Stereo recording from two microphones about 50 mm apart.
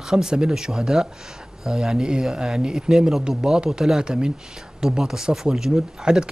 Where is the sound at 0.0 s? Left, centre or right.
Centre.